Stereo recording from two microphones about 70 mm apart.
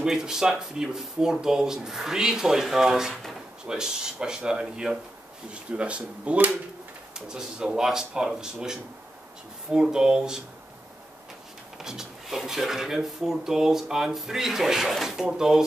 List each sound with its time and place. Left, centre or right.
0.0 s speech: centre
11.8 s speech: centre